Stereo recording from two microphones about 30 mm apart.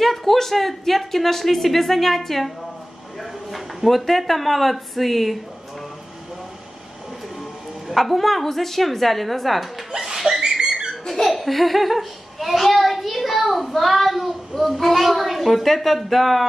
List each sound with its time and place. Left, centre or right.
0.0 s speech: centre
3.2 s a sound: centre
4.0 s speech: centre
7.9 s speech: centre
9.8 s laughter: right
11.1 s laughter: centre
11.3 s a child's voice: centre